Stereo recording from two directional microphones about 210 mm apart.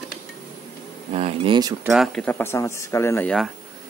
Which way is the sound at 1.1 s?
25° right (ahead or behind).